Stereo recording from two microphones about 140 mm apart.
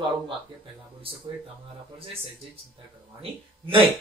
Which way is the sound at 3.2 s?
40° right (ahead or behind).